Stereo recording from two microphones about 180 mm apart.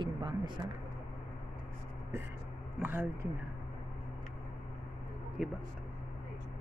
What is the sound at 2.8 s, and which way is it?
Speech, 10° right (ahead or behind).